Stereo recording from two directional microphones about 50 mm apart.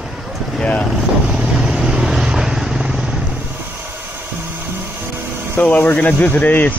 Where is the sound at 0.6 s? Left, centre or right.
Left.